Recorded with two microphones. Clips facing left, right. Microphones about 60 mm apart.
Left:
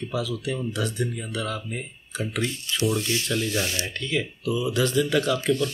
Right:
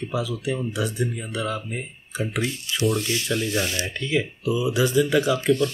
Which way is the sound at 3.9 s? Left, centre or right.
Centre.